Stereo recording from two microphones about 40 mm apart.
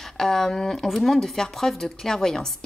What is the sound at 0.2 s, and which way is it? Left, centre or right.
A woman's voice, centre.